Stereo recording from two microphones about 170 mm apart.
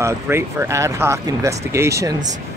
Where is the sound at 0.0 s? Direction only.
15° right (ahead or behind).